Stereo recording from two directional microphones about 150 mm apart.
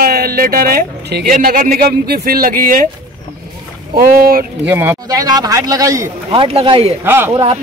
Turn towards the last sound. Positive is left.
turn(degrees=-40)  # may be behind; listen again after turning